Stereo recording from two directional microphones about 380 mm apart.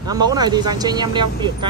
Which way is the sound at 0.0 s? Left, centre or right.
Centre.